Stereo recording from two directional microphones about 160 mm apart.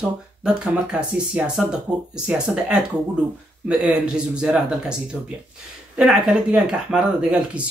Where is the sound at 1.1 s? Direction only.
5° right (ahead or behind).